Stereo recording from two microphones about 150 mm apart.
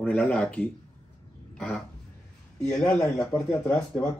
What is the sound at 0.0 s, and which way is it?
Speech, 10° left (ahead or behind).